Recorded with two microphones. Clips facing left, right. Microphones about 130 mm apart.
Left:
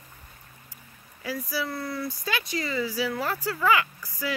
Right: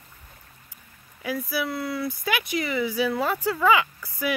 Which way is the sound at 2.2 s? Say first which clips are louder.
Right 4 dB; 15° right (ahead or behind).